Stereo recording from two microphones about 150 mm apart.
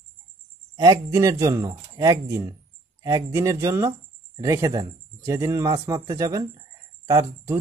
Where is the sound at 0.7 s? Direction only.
25° right (ahead or behind).